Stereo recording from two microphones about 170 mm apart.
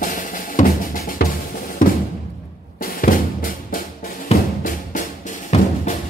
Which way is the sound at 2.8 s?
55° left (ahead or behind).